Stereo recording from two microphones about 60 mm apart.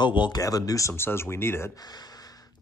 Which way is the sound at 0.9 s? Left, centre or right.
Left.